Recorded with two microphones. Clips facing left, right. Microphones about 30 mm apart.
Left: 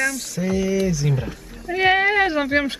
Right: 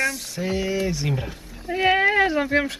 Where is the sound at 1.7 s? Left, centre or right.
Centre.